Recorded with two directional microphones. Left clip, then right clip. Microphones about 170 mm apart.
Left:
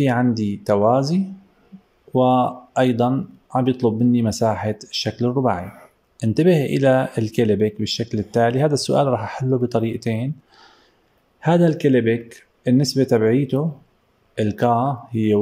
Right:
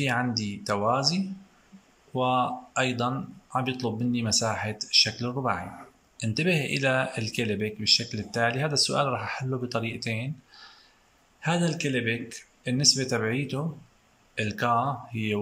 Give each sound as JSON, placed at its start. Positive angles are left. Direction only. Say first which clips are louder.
{"t": 0.0, "sound": "speech", "louder": "left 7 dB", "side_deg": 45}